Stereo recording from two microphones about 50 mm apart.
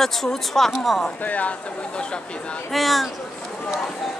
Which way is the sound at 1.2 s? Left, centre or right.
Left.